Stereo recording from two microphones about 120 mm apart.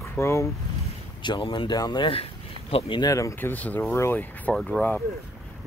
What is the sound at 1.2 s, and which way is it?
Speech, 40° left (ahead or behind).